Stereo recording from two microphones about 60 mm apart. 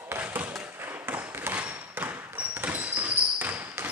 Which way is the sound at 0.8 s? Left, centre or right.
Right.